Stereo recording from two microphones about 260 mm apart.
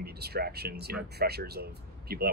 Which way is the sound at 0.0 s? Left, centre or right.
Right.